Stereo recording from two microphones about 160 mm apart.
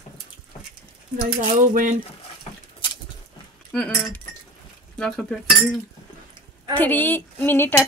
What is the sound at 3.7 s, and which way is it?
Speech, 5° left (ahead or behind).